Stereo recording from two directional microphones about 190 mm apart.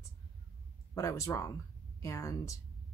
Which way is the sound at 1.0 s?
15° left (ahead or behind).